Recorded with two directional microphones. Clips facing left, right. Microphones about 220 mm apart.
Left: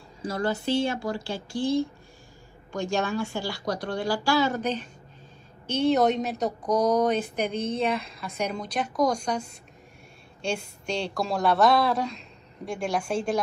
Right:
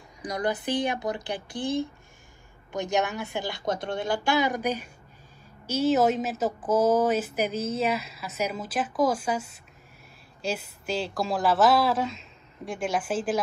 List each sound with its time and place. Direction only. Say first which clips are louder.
0.2 s a woman's voice: left 1 dB; 15° right (ahead or behind)